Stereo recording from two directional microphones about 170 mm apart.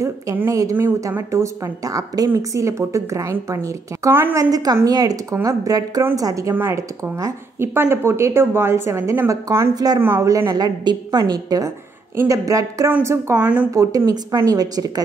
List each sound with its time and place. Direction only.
0.0 s a woman's voice: 20° right (ahead or behind)